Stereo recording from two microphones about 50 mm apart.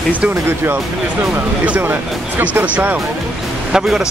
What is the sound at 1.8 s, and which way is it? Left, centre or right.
Speech, right.